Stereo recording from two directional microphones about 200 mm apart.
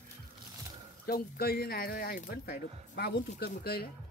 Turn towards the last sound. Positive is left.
turn(degrees=35)  # may be behind; listen again after turning